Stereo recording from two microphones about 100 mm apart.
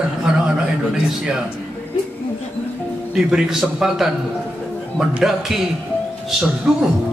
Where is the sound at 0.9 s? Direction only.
5° right (ahead or behind).